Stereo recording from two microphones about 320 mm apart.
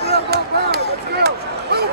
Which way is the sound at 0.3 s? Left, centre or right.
Right.